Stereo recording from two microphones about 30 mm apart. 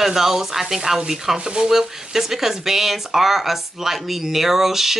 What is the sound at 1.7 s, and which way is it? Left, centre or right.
Speech, centre.